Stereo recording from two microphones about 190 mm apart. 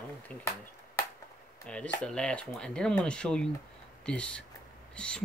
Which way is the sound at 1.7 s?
5° left (ahead or behind).